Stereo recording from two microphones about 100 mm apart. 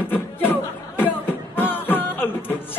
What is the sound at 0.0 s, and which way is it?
Music, 20° left (ahead or behind).